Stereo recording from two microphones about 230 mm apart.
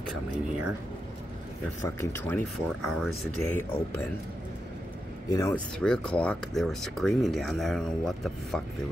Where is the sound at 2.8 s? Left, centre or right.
Centre.